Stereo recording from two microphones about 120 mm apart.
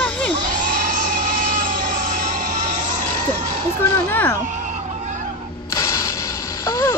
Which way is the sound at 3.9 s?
20° left (ahead or behind).